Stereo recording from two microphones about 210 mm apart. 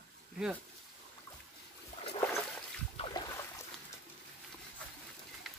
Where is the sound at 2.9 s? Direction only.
20° left (ahead or behind).